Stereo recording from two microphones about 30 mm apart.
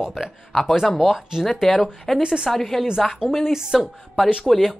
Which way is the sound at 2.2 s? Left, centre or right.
Right.